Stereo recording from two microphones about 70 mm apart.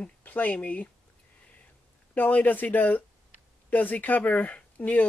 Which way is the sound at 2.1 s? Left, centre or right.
Left.